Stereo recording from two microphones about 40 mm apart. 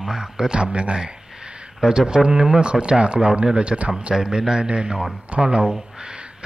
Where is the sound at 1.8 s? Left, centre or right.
Centre.